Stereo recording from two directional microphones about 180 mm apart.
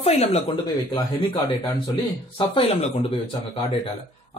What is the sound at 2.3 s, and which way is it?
Speech, 30° left (ahead or behind).